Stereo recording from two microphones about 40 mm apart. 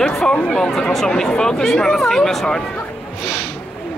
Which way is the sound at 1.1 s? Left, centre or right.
Centre.